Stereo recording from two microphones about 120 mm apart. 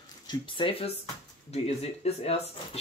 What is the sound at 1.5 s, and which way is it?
Speech, 60° left (ahead or behind).